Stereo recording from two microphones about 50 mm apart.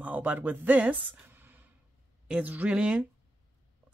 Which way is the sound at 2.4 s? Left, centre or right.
Right.